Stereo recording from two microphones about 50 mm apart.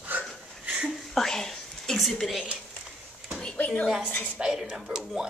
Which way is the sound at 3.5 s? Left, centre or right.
Left.